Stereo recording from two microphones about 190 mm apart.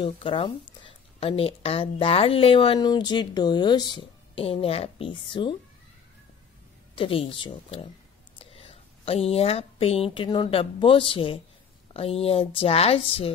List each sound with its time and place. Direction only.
0.0 s a woman's voice: 25° left (ahead or behind)
7.0 s a woman's voice: 30° left (ahead or behind)